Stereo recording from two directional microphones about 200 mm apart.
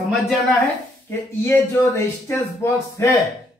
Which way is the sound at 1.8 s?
15° left (ahead or behind).